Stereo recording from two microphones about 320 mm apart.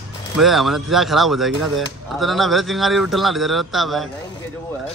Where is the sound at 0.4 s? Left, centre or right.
Centre.